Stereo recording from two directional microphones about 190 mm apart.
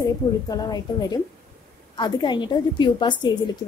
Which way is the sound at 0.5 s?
20° left (ahead or behind).